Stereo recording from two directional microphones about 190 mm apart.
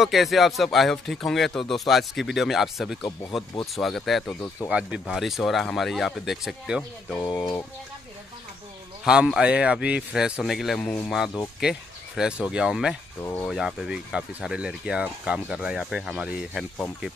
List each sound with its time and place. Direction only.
0.0 s speech: centre (ahead or behind)
7.2 s a sound: 20° left (ahead or behind)
9.0 s speech: 5° right (ahead or behind)